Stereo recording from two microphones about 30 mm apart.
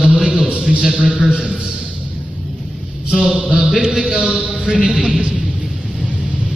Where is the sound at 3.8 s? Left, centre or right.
Right.